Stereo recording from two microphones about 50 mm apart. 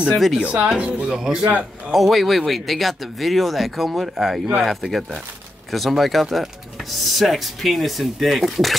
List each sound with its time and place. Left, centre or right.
0.1 s speech: centre
0.4 s speech: right
1.4 s speech: right
1.9 s speech: centre